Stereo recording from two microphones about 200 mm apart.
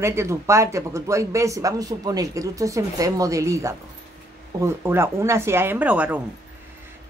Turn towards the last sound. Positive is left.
turn(degrees=-5)  # may be behind; listen again after turning